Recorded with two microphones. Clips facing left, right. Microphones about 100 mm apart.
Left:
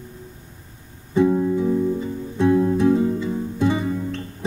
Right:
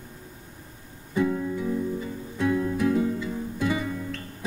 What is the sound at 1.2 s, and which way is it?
Music, 30° left (ahead or behind).